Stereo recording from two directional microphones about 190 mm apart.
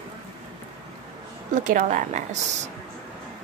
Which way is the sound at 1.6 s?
40° right (ahead or behind).